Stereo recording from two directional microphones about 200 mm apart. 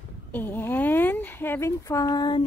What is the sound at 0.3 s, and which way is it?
Speech, 10° left (ahead or behind).